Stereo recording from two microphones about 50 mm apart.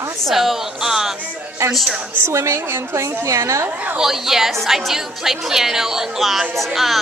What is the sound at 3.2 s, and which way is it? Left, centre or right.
Speech, right.